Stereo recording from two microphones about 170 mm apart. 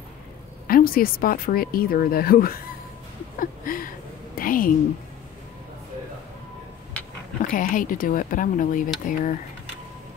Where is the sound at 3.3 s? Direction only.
55° left (ahead or behind).